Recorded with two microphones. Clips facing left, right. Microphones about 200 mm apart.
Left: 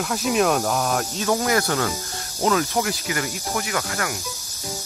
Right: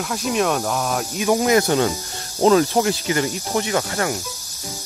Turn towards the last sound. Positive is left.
turn(degrees=-30)  # may be behind; listen again after turning